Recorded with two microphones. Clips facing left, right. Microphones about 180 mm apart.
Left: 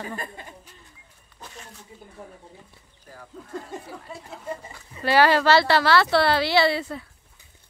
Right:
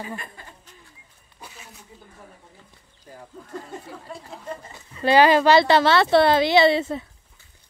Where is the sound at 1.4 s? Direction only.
5° right (ahead or behind).